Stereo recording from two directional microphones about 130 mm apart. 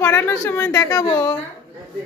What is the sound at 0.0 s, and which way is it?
A woman's voice, 20° left (ahead or behind).